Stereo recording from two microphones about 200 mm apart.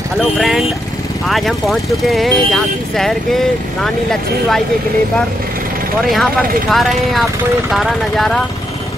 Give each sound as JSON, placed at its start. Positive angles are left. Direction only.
{"t": 0.2, "sound": "speech", "side_deg": 0}
{"t": 6.7, "sound": "speech", "side_deg": 0}